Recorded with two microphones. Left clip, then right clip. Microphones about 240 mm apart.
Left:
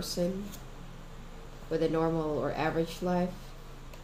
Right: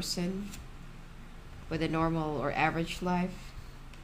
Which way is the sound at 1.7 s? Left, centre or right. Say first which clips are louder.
Left 3 dB; right.